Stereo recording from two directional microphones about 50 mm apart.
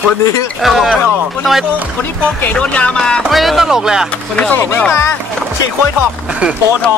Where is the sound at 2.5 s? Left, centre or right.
Left.